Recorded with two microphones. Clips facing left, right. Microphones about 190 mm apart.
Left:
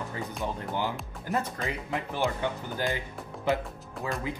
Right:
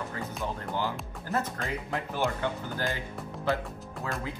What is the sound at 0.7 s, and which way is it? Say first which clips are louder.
Speech: left 1 dB; 15° left (ahead or behind).